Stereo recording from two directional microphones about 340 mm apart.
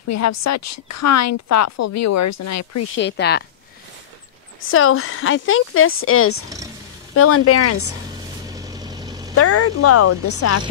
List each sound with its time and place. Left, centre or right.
0.1 s a woman's voice: left
3.0 s speech: left
4.6 s speech: left
8.5 s vehicle: centre
9.3 s speech: left